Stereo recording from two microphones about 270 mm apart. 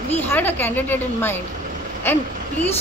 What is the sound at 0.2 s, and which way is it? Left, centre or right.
A woman's voice, centre.